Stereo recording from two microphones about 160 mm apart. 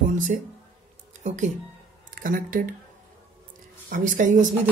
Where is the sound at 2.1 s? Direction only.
60° right (ahead or behind).